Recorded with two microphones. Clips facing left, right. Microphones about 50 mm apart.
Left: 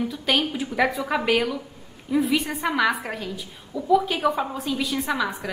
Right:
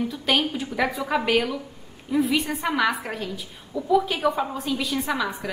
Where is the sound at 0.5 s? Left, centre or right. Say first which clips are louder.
Left 2 dB; centre.